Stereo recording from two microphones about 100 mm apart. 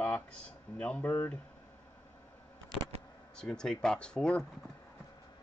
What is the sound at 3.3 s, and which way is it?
Speech, 5° left (ahead or behind).